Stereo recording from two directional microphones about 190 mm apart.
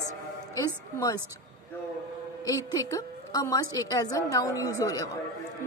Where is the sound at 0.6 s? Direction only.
20° left (ahead or behind).